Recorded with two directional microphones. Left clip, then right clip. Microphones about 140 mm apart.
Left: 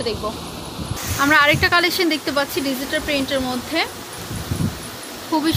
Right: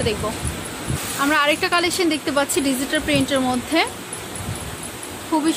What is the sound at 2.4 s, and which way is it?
Speech, 35° right (ahead or behind).